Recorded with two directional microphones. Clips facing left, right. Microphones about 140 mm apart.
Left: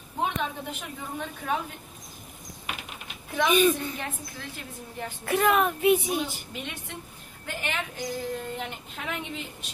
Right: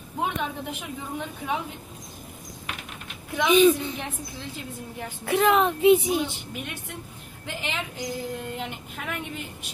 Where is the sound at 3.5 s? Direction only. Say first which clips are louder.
Right 5 dB; 5° left (ahead or behind).